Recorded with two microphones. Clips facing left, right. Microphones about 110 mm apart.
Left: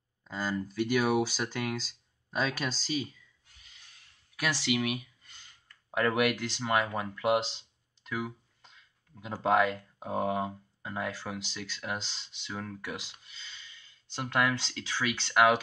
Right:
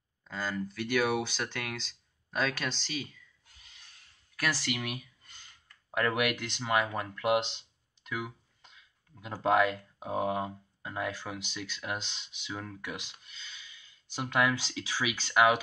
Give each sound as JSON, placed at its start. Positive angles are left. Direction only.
{"t": 0.3, "sound": "speech", "side_deg": 10}
{"t": 4.4, "sound": "speech", "side_deg": 5}